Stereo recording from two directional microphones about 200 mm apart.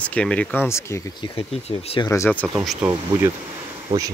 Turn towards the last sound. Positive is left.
turn(degrees=-35)  # may be behind; listen again after turning